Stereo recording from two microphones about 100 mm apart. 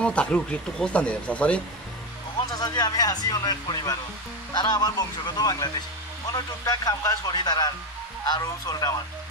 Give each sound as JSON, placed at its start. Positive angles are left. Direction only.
{"t": 0.0, "sound": "speech", "side_deg": 10}
{"t": 2.5, "sound": "speech", "side_deg": 40}